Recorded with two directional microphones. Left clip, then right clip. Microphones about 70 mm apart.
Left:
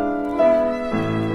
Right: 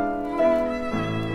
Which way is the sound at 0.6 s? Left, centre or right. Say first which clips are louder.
Left 5 dB; left.